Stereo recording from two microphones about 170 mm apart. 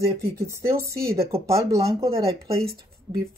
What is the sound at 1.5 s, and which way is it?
Speech, 20° right (ahead or behind).